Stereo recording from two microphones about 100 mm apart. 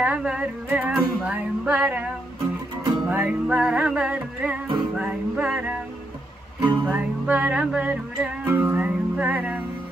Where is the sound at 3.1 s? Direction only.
15° right (ahead or behind).